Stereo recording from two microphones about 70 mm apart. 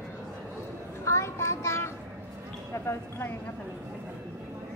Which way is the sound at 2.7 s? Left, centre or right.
Left.